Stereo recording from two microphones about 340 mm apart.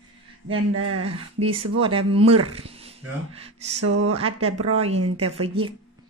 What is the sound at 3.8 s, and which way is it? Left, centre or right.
Speech, right.